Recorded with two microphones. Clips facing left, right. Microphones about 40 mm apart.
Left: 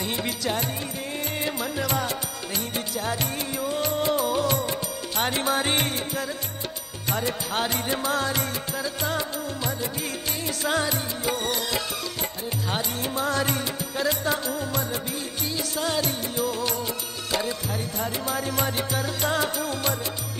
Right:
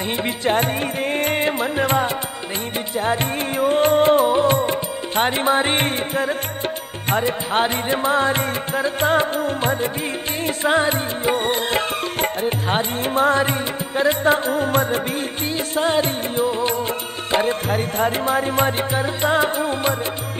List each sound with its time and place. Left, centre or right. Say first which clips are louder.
0.2 s music: right 12 dB; right
17.3 s music: right 9 dB; right